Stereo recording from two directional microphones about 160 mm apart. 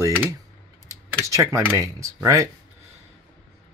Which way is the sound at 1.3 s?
20° right (ahead or behind).